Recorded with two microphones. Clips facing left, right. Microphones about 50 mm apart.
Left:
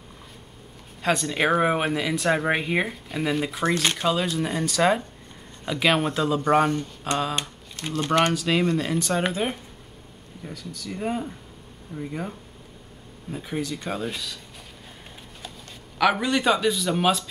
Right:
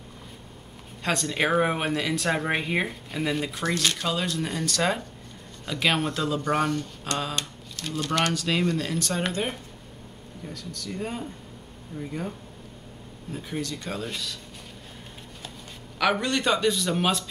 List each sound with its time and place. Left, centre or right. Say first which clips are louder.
1.0 s speech: left 3 dB; centre
3.8 s mantra: left 3 dB; left
4.1 s speech: left 4 dB; centre
6.7 s mantra: left 3 dB; centre
7.3 s a sound: left 2 dB; left
8.0 s mantra: left 4 dB; left
8.3 s speech: left 3 dB; centre
16.0 s speech: left 3 dB; centre